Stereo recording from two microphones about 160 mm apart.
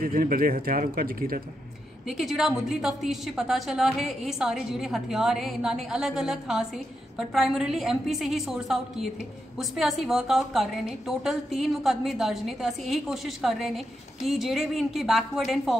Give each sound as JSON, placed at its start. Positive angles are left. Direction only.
{"t": 0.0, "sound": "speech", "side_deg": -65}
{"t": 2.0, "sound": "a woman's voice", "side_deg": 0}